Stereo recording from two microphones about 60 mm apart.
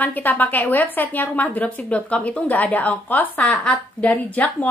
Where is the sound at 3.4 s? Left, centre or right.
Centre.